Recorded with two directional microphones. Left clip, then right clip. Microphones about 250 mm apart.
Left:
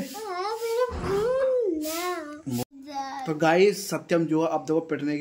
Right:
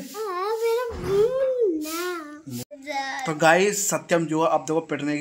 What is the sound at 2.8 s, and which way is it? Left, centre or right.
Speech, left.